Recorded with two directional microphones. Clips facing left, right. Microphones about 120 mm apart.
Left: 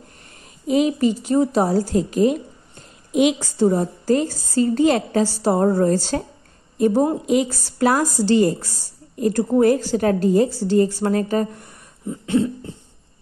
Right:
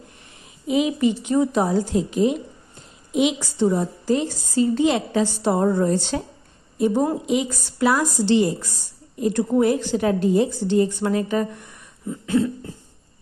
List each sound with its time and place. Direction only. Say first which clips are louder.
0.7 s a woman's voice: left 2 dB; 40° left (ahead or behind)
7.2 s a woman's voice: left 3 dB; 40° left (ahead or behind)
12.1 s cough: left 1 dB; 25° left (ahead or behind)